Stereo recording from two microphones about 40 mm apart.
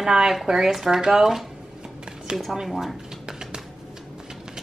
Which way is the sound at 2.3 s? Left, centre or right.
Centre.